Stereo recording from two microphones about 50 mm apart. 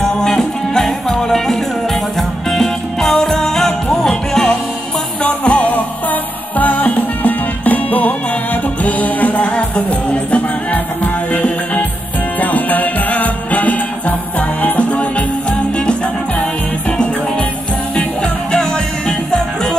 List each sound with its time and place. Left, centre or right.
0.0 s music: centre
5.2 s music: left
5.6 s music: left
18.2 s music: centre